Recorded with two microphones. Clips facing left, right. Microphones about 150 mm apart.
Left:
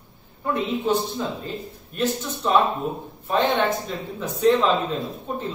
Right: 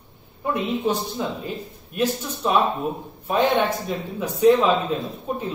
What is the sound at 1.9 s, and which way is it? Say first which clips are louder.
Speech: right 1 dB; 10° right (ahead or behind).